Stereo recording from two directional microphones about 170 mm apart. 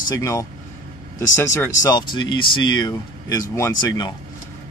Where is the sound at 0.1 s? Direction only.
20° left (ahead or behind).